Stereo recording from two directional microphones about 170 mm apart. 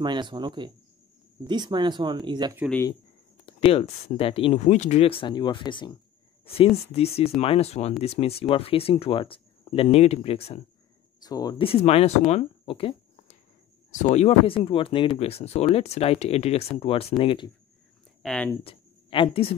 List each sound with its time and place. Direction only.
0.0 s speech: 25° right (ahead or behind)
3.4 s speech: 35° left (ahead or behind)
11.2 s speech: 20° left (ahead or behind)
11.6 s speech: 35° left (ahead or behind)
18.2 s speech: 5° left (ahead or behind)
18.6 s speech: 30° left (ahead or behind)